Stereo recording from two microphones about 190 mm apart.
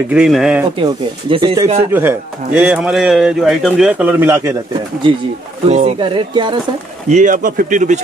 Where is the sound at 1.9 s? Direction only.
10° right (ahead or behind).